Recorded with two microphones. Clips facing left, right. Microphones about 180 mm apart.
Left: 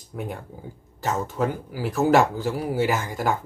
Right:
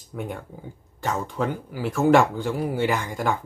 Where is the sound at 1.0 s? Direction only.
Centre (ahead or behind).